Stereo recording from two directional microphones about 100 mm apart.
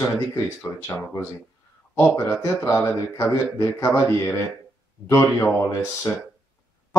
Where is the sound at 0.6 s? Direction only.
25° left (ahead or behind).